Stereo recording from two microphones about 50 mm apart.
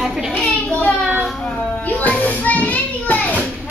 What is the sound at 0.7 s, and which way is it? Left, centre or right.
Speech, left.